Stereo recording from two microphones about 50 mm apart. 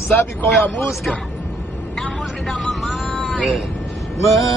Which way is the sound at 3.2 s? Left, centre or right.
Left.